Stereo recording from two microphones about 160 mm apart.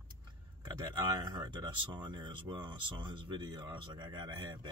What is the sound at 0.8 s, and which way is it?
Speech, 25° right (ahead or behind).